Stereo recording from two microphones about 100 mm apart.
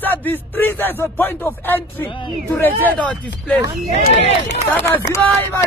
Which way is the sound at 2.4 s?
15° left (ahead or behind).